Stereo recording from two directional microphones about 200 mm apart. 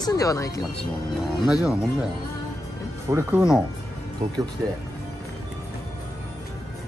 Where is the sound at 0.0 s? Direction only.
15° left (ahead or behind).